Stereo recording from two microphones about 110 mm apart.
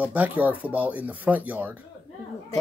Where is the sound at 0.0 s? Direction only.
15° right (ahead or behind).